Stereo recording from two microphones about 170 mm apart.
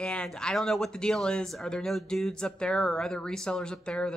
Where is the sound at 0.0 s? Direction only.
5° left (ahead or behind).